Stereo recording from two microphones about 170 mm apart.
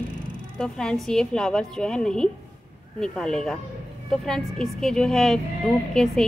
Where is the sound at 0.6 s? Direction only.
5° left (ahead or behind).